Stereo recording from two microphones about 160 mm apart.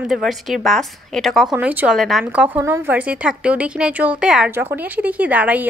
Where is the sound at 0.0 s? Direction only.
Centre (ahead or behind).